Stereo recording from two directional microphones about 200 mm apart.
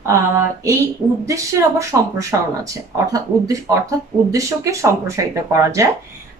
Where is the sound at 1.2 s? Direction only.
15° right (ahead or behind).